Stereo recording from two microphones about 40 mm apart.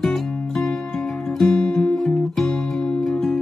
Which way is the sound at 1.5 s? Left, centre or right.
Left.